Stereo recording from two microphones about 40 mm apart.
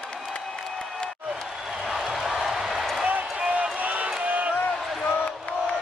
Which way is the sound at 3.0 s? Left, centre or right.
Right.